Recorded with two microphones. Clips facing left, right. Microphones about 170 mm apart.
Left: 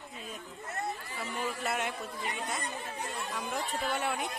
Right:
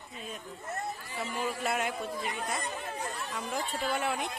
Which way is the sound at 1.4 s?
Centre (ahead or behind).